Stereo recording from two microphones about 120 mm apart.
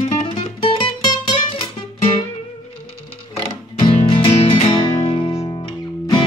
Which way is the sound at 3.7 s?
45° left (ahead or behind).